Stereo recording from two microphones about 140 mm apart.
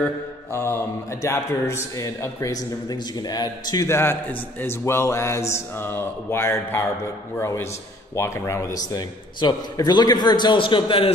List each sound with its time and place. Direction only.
0.5 s a man's voice: 15° left (ahead or behind); by 11.1 s 40° left (ahead or behind)